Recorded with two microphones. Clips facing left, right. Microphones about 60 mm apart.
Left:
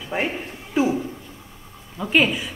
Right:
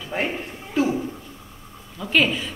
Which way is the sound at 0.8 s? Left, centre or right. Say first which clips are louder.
Left 1 dB; centre.